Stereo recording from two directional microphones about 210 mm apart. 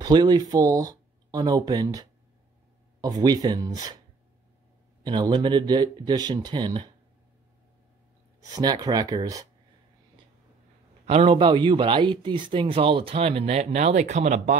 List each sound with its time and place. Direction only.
0.0 s speech: 20° right (ahead or behind)
5.0 s speech: 20° right (ahead or behind)
8.4 s speech: 20° right (ahead or behind)
11.1 s speech: 30° right (ahead or behind)